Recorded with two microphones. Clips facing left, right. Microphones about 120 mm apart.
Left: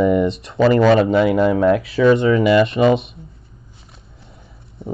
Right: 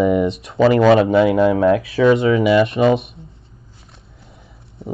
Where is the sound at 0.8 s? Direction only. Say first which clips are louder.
Right 1 dB; 20° right (ahead or behind).